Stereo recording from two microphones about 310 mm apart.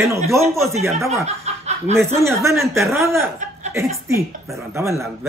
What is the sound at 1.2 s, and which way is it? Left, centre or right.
Chicken, right.